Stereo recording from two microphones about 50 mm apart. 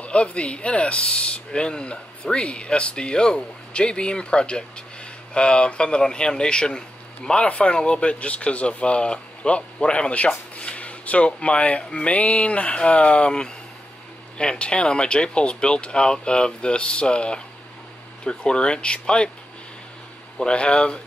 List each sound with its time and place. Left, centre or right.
0.0 s speech: left
20.3 s speech: centre